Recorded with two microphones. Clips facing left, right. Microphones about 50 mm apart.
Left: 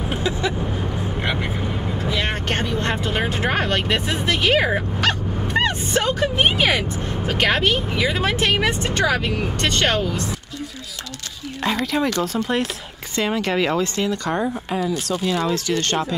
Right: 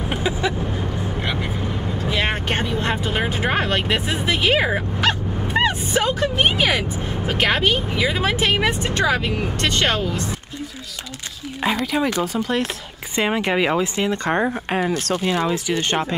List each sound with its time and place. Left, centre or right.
0.1 s vehicle: centre
2.0 s speech: centre
6.2 s speech: centre
11.6 s speech: centre
13.1 s speech: right
14.1 s speech: right
14.7 s speech: right
15.2 s speech: centre